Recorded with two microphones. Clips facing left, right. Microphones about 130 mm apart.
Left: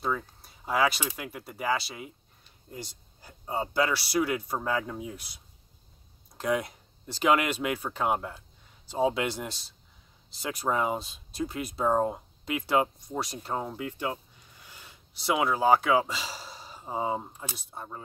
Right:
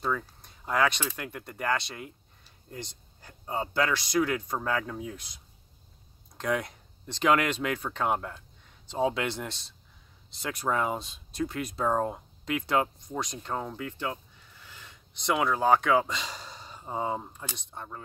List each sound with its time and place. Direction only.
0.0 s speech: 5° left (ahead or behind)
3.2 s speech: 15° left (ahead or behind)
10.7 s speech: 15° left (ahead or behind)
11.0 s speech: 5° left (ahead or behind)
11.8 s speech: 15° left (ahead or behind)